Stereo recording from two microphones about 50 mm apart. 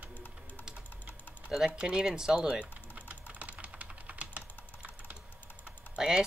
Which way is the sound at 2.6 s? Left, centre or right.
Right.